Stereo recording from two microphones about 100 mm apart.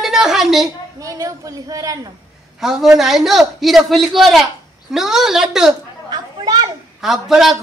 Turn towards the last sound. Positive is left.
turn(degrees=-5)  # may be behind; listen again after turning